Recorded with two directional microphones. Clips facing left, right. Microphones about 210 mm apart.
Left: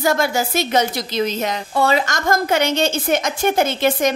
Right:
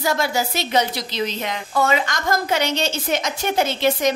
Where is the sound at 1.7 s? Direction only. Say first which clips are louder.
Left 2 dB; 35° left (ahead or behind).